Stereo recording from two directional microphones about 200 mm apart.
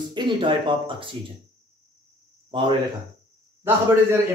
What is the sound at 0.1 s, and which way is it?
Speech, 25° right (ahead or behind).